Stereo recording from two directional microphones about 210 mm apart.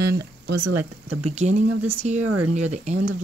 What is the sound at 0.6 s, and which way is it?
Speech, 90° right.